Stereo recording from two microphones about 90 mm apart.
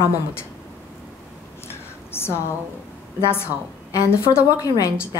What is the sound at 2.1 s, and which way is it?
Speech, 30° left (ahead or behind).